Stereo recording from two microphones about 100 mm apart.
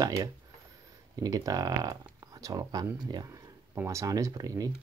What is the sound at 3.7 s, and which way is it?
Speech, 30° right (ahead or behind).